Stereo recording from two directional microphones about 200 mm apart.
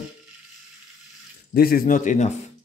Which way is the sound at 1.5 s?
50° left (ahead or behind).